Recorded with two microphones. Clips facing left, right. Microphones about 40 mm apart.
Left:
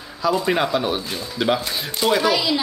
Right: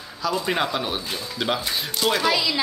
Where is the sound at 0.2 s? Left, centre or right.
Centre.